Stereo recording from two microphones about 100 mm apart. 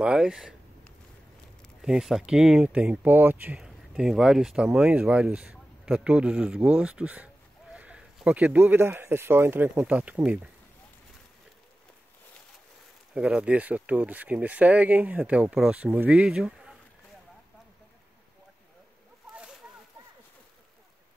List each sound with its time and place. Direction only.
0.0 s speech: 5° right (ahead or behind)
1.8 s speech: 5° right (ahead or behind)
3.5 s speech: 5° right (ahead or behind)
13.1 s speech: 10° right (ahead or behind)